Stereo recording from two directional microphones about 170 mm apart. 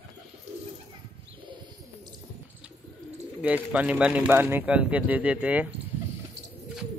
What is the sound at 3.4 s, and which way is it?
Speech, 5° right (ahead or behind).